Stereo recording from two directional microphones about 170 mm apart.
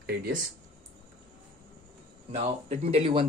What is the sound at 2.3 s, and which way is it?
Speech, 35° right (ahead or behind).